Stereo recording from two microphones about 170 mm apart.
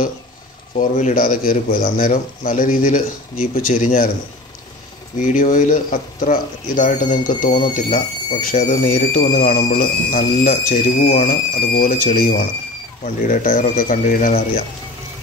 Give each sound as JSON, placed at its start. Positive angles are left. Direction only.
{"t": 0.7, "sound": "speech", "side_deg": 50}
{"t": 5.1, "sound": "speech", "side_deg": 50}